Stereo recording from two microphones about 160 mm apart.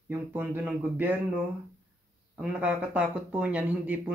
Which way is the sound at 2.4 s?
5° right (ahead or behind).